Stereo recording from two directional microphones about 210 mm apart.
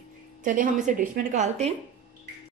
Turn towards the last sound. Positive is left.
turn(degrees=-35)  # may be behind; listen again after turning